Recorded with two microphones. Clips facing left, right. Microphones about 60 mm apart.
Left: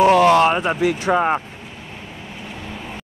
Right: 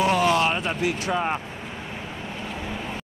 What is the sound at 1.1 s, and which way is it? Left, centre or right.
Speech, left.